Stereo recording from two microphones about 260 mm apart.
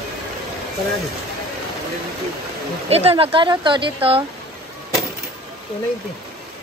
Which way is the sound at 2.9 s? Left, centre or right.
Right.